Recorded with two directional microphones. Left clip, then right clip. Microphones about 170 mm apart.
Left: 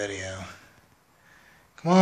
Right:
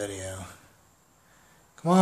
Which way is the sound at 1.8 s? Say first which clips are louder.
Even; 10° right (ahead or behind).